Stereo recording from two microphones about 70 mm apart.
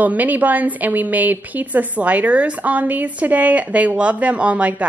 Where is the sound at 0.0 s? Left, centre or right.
Right.